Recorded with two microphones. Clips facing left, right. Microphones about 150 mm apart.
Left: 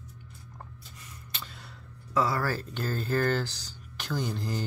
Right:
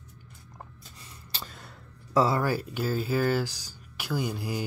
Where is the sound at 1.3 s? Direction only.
45° right (ahead or behind).